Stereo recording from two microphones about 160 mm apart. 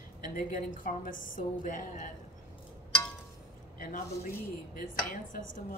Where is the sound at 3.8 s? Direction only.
60° left (ahead or behind).